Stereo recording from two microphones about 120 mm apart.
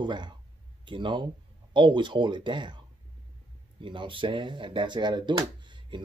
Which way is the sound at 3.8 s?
45° right (ahead or behind).